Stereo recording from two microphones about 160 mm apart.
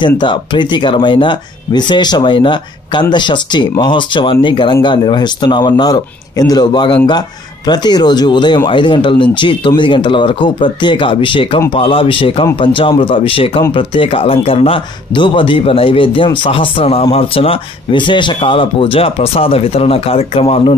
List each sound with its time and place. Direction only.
0.0 s speech: 30° left (ahead or behind)